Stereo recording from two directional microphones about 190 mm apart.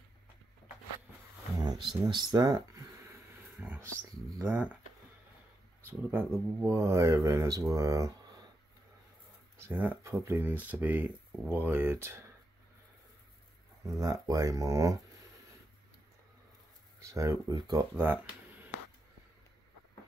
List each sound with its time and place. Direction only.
1.6 s speech: 20° right (ahead or behind)
3.6 s a sound: 10° right (ahead or behind)
4.4 s speech: 10° right (ahead or behind)
5.9 s speech: 10° right (ahead or behind)
9.6 s speech: 10° right (ahead or behind)
13.8 s speech: 20° right (ahead or behind)
17.0 s speech: 15° right (ahead or behind)